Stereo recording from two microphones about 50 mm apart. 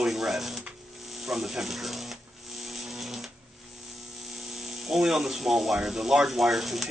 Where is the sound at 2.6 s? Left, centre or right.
Centre.